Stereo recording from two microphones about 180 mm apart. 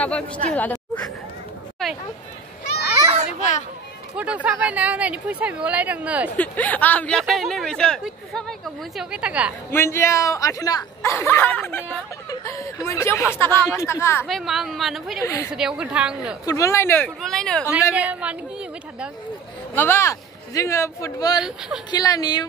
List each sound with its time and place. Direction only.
0.0 s speech: 5° left (ahead or behind)
0.6 s a sound: 10° left (ahead or behind)
4.2 s a woman's voice: 5° right (ahead or behind)
6.3 s speech: 10° left (ahead or behind)
9.7 s speech: 15° left (ahead or behind)
14.2 s speech: centre (ahead or behind)
15.2 s speech: 15° left (ahead or behind)
15.5 s speech: 5° right (ahead or behind)
16.4 s speech: 15° left (ahead or behind)
17.9 s a woman's voice: 5° right (ahead or behind)
19.7 s speech: 10° left (ahead or behind)
21.4 s speech: 5° right (ahead or behind)
21.9 s speech: 20° left (ahead or behind)